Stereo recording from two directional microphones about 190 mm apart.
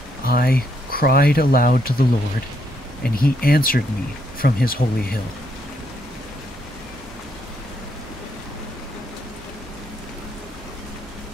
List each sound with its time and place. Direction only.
0.2 s speech: 50° left (ahead or behind)